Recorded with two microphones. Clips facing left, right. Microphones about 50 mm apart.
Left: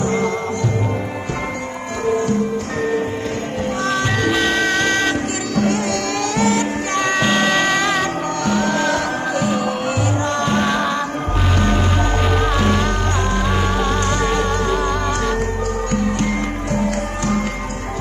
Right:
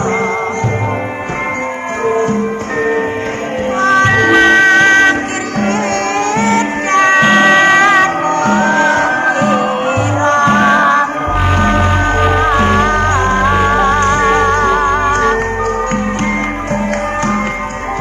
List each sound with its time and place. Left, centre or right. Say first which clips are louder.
2.0 s music: right 5 dB; right
3.8 s music: right 10 dB; right
6.3 s music: right 2 dB; right